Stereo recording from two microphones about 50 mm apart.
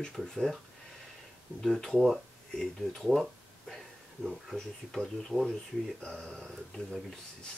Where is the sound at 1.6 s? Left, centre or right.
Centre.